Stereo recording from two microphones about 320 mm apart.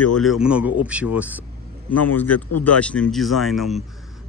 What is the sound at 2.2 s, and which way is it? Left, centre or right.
Speech, left.